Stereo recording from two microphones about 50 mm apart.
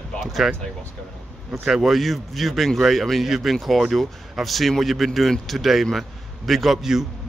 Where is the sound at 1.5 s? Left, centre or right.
Centre.